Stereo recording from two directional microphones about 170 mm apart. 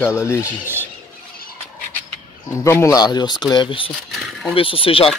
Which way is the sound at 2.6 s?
15° left (ahead or behind).